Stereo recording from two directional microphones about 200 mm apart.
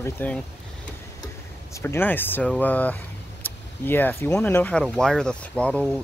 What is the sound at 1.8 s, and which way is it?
Speech, 10° left (ahead or behind).